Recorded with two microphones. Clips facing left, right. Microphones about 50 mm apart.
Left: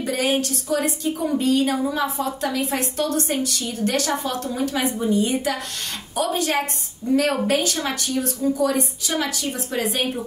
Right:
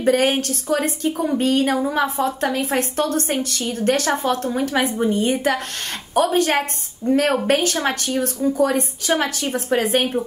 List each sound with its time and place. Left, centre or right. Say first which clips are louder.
0.0 s a woman's voice: right 5 dB; right